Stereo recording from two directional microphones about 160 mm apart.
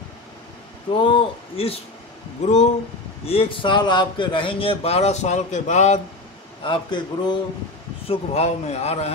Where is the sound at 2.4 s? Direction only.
45° left (ahead or behind).